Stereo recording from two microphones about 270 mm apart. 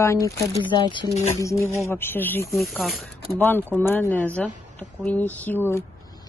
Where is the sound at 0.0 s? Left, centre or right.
Centre.